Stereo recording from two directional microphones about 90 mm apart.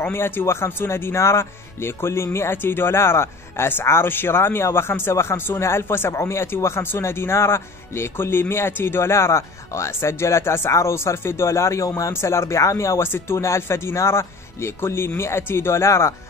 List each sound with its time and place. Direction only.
0.0 s speech: 25° left (ahead or behind)